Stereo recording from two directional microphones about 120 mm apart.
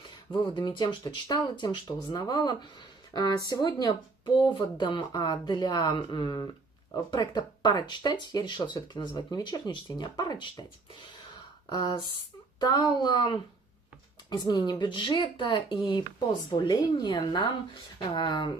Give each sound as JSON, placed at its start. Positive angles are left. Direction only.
{"t": 0.5, "sound": "speech", "side_deg": 40}
{"t": 11.7, "sound": "speech", "side_deg": 35}